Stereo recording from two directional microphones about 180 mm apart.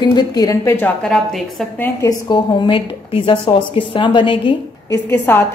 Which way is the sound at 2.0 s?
20° left (ahead or behind).